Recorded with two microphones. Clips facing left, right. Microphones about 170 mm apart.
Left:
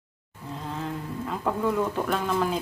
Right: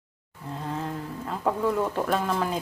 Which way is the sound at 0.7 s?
Centre (ahead or behind).